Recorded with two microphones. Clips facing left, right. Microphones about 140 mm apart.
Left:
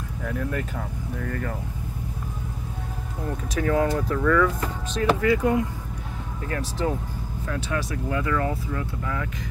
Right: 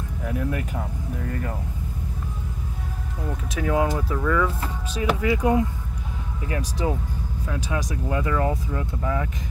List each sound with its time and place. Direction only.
0.2 s speech: 15° right (ahead or behind)
3.5 s speech: 10° right (ahead or behind)
5.2 s speech: 20° right (ahead or behind)